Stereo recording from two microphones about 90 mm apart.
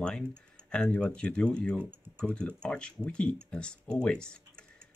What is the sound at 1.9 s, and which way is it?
Typing, 25° right (ahead or behind).